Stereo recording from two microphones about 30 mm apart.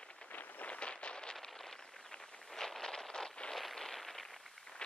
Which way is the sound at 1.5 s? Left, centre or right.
Centre.